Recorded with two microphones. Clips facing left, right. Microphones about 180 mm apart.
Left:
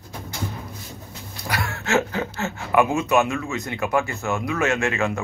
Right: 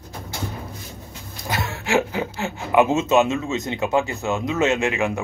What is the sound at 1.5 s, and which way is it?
Speech, 20° right (ahead or behind).